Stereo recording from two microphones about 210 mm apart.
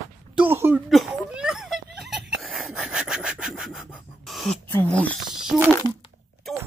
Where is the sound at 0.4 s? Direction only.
10° right (ahead or behind).